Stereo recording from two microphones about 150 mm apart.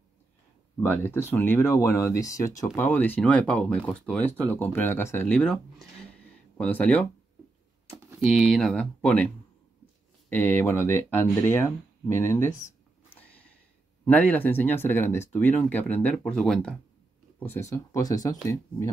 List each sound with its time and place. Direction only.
0.7 s speech: 15° left (ahead or behind)
8.3 s speech: 5° left (ahead or behind)
10.3 s speech: 15° left (ahead or behind)
13.1 s a sound: 10° left (ahead or behind)
14.0 s speech: 10° left (ahead or behind)
17.4 s speech: 20° left (ahead or behind)